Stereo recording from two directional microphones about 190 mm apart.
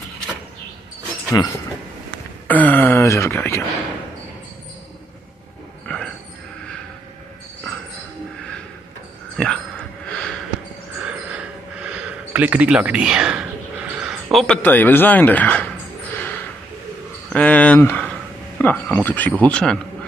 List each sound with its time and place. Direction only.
1.4 s train: 20° left (ahead or behind)
2.4 s a man's voice: 10° left (ahead or behind)
9.4 s a sound: 5° left (ahead or behind)
11.3 s a sound: 5° right (ahead or behind)
14.4 s a man's voice: 5° left (ahead or behind)
17.3 s a man's voice: 5° left (ahead or behind)